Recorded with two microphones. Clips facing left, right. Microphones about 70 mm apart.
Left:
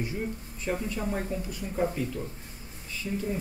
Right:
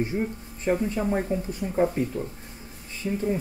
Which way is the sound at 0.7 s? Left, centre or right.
Right.